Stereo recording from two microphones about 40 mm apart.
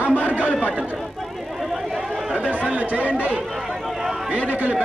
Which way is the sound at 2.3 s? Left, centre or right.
Right.